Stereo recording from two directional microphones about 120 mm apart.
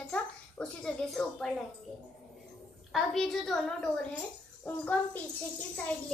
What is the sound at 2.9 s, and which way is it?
A woman's voice, centre (ahead or behind).